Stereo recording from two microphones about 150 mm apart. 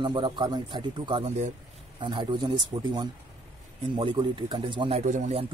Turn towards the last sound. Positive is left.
turn(degrees=-55)  # may be behind; listen again after turning